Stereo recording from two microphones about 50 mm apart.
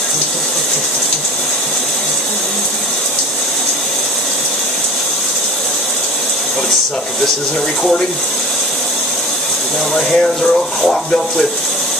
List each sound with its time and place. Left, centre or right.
9.9 s speech: centre